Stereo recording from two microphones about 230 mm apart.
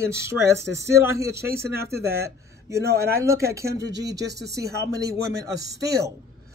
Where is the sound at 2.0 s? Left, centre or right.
Right.